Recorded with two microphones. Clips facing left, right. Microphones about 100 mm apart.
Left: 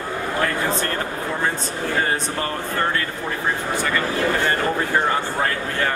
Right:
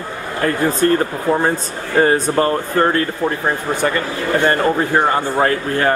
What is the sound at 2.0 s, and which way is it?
Speech, 40° right (ahead or behind).